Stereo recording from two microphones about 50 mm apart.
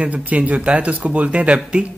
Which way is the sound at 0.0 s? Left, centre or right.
Right.